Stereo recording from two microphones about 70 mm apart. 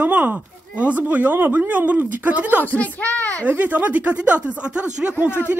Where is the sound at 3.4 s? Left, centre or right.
Right.